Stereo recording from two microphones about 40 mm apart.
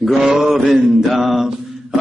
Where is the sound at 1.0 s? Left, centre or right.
Centre.